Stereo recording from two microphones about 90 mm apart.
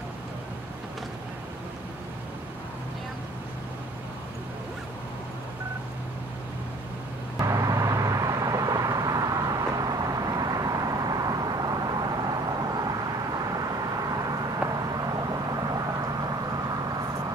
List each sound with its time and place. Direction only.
7.3 s vehicle: 40° right (ahead or behind)
14.7 s vehicle: 45° right (ahead or behind)